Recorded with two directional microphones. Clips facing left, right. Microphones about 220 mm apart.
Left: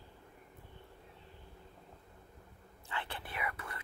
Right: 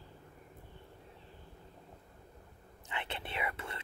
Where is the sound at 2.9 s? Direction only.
20° right (ahead or behind).